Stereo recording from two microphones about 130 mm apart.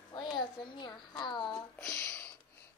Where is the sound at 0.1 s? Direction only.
35° left (ahead or behind).